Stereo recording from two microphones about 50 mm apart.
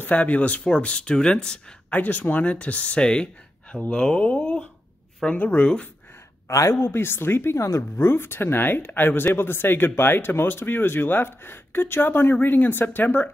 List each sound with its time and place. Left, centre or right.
0.0 s speech: left
0.7 s speech: centre
1.9 s speech: left
6.4 s speech: left
6.7 s speech: left
7.5 s speech: left
8.0 s speech: left